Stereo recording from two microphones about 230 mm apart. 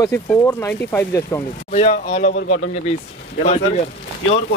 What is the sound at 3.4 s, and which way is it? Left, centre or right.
Speech, left.